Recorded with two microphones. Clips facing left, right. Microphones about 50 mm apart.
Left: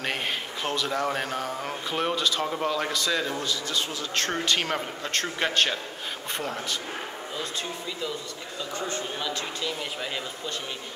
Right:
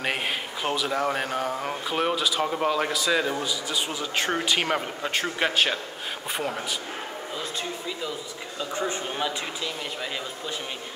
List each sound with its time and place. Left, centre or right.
0.0 s speech: centre
8.7 s a man's voice: centre